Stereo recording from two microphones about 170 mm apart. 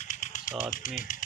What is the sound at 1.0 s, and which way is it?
Speech, 50° left (ahead or behind).